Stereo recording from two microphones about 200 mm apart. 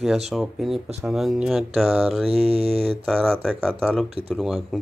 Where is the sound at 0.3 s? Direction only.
Centre (ahead or behind).